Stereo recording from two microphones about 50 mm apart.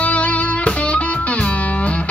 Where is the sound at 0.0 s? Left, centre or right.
Left.